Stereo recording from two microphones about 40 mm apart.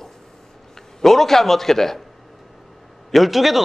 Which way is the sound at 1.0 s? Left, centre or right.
Centre.